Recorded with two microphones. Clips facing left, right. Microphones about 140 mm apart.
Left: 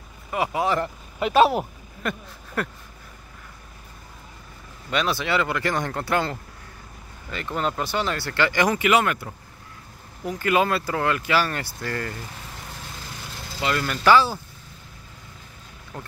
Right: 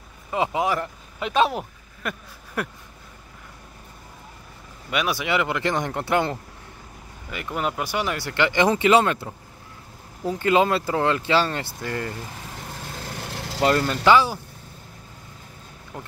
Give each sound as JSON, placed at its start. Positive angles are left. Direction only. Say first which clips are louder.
{"t": 0.3, "sound": "speech", "louder": "right 1 dB", "side_deg": -20}
{"t": 0.7, "sound": "speech", "louder": "left 1 dB", "side_deg": 0}
{"t": 2.0, "sound": "a sound", "louder": "left 2 dB", "side_deg": -15}
{"t": 4.9, "sound": "speech", "louder": "even", "side_deg": -10}
{"t": 13.1, "sound": "vehicle", "louder": "right 5 dB", "side_deg": -60}
{"t": 13.6, "sound": "speech", "louder": "right 5 dB", "side_deg": -40}
{"t": 14.0, "sound": "speech", "louder": "even", "side_deg": -15}